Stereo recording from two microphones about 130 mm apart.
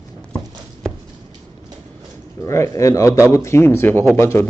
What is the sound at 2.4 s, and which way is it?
Speech, 25° left (ahead or behind).